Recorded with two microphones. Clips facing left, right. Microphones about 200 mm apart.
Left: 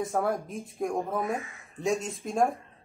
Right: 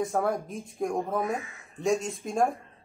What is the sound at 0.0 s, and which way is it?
Speech, centre (ahead or behind).